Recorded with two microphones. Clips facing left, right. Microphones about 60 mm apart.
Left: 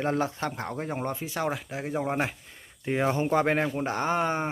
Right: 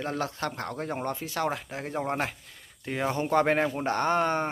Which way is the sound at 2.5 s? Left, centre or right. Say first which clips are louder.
Left 5 dB; centre.